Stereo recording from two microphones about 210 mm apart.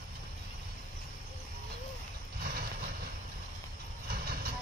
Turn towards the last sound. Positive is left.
turn(degrees=-45)  # may be behind; listen again after turning